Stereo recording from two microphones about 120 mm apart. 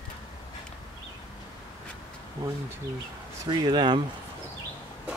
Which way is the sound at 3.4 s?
40° right (ahead or behind).